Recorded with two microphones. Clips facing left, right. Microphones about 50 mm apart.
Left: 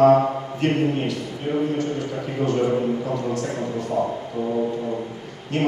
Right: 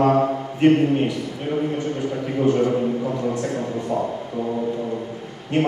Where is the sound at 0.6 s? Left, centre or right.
Right.